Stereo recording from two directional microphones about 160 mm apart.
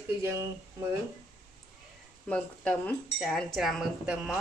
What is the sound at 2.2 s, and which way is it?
A woman's voice, 10° left (ahead or behind).